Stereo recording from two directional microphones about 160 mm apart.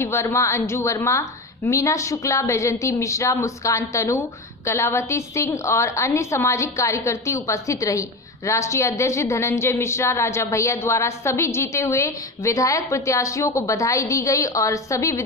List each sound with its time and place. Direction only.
0.0 s a woman's voice: 15° left (ahead or behind)